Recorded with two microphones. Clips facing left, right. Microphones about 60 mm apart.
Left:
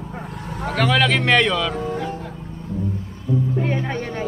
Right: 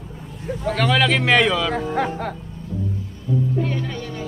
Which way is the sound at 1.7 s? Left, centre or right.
Right.